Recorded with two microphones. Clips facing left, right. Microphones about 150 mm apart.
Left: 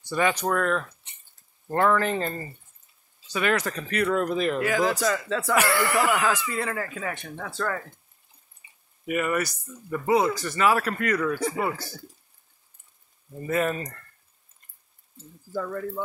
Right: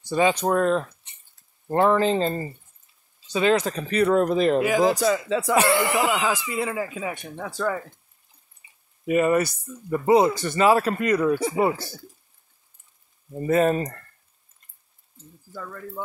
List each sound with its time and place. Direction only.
0.1 s speech: 20° right (ahead or behind)
4.6 s speech: 15° right (ahead or behind)
5.5 s speech: 25° right (ahead or behind)
9.0 s speech: 25° right (ahead or behind)
13.5 s speech: 35° right (ahead or behind)